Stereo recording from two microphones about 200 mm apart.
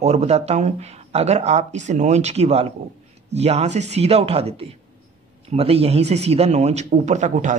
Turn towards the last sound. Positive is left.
turn(degrees=-35)  # may be behind; listen again after turning